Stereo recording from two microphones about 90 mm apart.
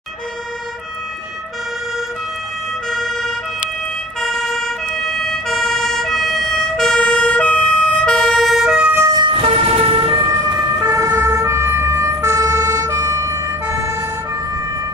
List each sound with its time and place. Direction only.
2.9 s emergency vehicle: 5° left (ahead or behind)
9.2 s vehicle: 75° right (ahead or behind)
10.3 s emergency vehicle: 45° right (ahead or behind)